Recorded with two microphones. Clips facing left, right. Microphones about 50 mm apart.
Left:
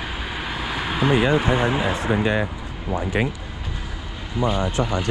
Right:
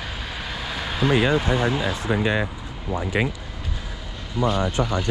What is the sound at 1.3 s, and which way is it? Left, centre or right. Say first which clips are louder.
Speech: left 2 dB; left.